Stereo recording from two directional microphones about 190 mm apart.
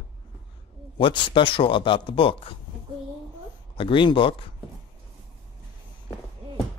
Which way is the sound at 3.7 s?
25° left (ahead or behind).